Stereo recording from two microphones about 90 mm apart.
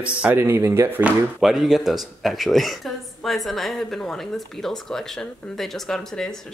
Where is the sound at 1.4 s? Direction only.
5° right (ahead or behind).